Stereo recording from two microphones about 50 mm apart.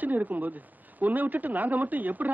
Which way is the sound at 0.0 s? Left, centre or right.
Right.